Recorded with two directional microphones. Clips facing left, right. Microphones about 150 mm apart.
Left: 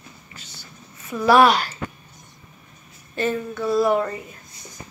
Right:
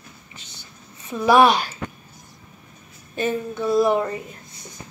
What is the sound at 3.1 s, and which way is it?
A woman's voice, 15° right (ahead or behind).